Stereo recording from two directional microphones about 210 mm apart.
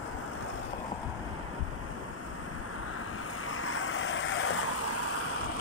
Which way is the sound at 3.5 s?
75° left (ahead or behind).